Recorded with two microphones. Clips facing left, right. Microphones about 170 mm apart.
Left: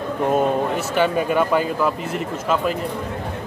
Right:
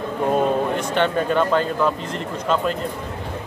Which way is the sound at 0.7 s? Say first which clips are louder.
Left 1 dB; 5° left (ahead or behind).